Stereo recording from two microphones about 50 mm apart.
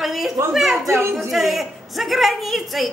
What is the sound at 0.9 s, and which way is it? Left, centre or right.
Speech, right.